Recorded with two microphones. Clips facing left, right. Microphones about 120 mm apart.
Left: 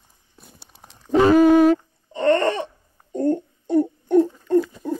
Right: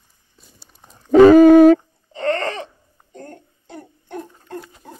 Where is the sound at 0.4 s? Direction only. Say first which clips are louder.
Left 3 dB; 60° left (ahead or behind).